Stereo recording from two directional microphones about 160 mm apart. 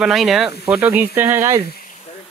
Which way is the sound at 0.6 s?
10° right (ahead or behind).